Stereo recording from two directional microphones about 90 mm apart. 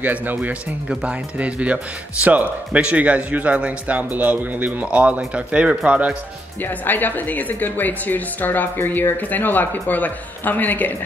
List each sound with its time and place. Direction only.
0.0 s speech: 20° right (ahead or behind)
6.6 s speech: 20° left (ahead or behind)